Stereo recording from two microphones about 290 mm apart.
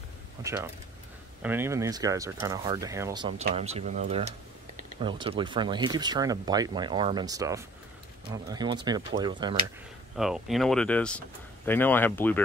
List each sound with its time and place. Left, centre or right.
0.4 s speech: centre
10.1 s speech: centre